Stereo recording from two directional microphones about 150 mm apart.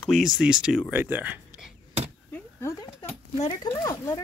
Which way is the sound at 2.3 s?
15° left (ahead or behind).